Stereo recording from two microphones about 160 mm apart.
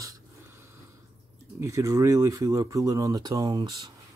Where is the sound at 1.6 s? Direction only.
20° right (ahead or behind).